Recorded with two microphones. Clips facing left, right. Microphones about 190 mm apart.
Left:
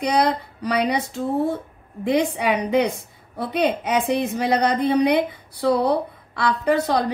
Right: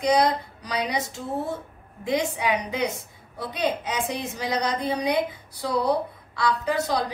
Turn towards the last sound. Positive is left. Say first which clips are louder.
# left 5 dB
turn(degrees=60)  # may be behind; listen again after turning